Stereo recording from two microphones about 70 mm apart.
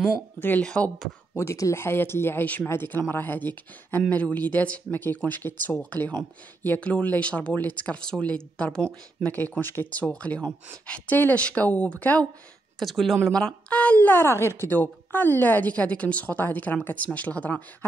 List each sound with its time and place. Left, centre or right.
0.4 s speech: left
1.3 s speech: left
2.4 s speech: left
2.7 s speech: left; by 9.3 s centre
9.6 s speech: left
12.7 s speech: centre
13.3 s speech: centre